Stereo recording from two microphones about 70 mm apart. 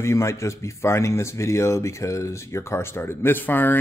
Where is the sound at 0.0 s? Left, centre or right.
Left.